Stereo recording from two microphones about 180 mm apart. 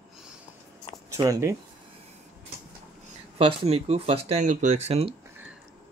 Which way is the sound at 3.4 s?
30° right (ahead or behind).